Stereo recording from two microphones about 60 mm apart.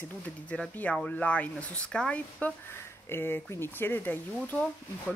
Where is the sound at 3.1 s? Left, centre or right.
Left.